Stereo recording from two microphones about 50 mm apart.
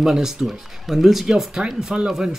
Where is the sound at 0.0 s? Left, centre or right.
Centre.